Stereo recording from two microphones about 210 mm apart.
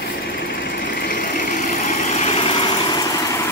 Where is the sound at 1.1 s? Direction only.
40° left (ahead or behind).